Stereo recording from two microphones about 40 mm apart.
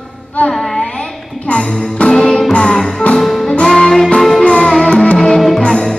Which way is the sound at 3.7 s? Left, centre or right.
Centre.